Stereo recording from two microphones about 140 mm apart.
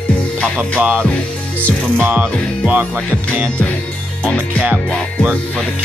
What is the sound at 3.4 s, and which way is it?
Music, 10° left (ahead or behind).